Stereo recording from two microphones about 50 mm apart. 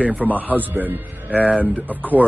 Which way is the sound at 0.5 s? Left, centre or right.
Right.